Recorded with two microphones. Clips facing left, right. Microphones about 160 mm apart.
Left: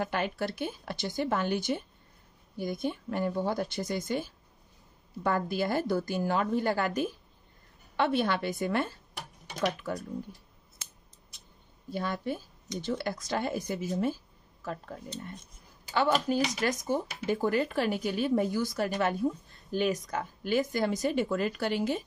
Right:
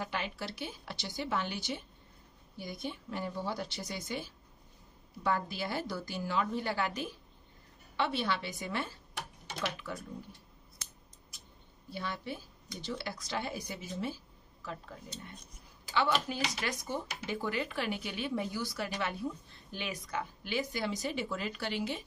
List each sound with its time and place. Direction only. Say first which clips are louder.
0.0 s speech: left 7 dB; 50° left (ahead or behind)
11.9 s speech: left 7 dB; 50° left (ahead or behind)